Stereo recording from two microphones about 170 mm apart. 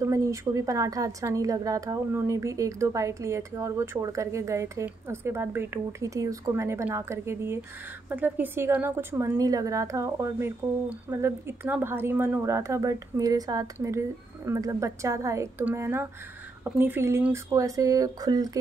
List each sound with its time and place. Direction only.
0.0 s a woman's voice: 20° right (ahead or behind)